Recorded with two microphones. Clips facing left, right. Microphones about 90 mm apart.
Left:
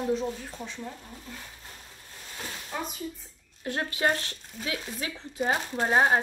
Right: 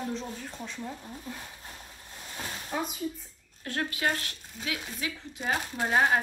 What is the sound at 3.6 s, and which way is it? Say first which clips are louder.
A woman's voice: left 3 dB; 25° left (ahead or behind).